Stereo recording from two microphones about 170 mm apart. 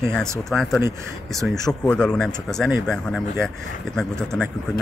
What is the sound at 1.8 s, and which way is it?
Speech, 5° left (ahead or behind).